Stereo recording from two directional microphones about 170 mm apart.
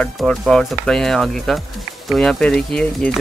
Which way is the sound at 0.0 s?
5° left (ahead or behind).